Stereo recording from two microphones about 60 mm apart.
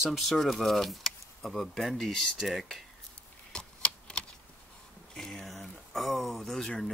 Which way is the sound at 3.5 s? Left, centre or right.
Centre.